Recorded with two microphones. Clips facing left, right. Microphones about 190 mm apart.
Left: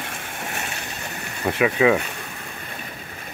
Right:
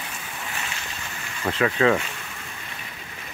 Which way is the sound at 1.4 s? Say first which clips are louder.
Left 2 dB; 15° left (ahead or behind).